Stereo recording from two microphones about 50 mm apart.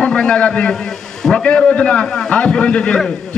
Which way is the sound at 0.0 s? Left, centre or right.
Centre.